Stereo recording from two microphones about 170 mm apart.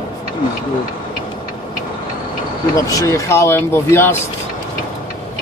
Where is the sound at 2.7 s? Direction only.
20° left (ahead or behind).